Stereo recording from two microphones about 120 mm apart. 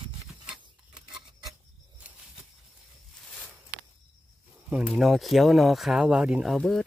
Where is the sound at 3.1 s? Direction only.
5° left (ahead or behind).